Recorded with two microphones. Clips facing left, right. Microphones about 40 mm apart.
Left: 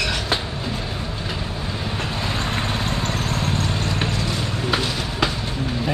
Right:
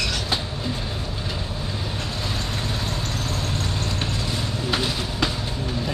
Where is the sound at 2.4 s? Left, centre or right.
Left.